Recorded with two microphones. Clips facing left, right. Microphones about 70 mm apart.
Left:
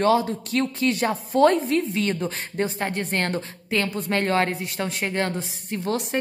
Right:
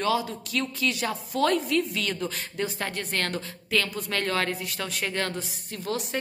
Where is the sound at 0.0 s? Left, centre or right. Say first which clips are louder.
Left 6 dB; left.